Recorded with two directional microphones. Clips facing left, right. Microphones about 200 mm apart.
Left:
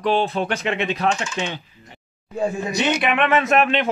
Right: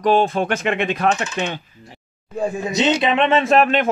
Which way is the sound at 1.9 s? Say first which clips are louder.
Right 1 dB; centre (ahead or behind).